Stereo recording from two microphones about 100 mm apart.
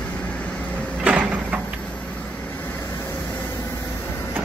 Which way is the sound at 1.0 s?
15° right (ahead or behind).